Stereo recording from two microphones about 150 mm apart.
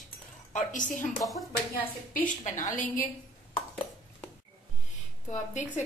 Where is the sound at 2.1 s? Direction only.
55° left (ahead or behind).